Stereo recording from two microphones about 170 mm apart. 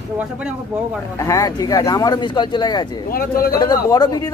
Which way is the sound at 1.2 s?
20° left (ahead or behind).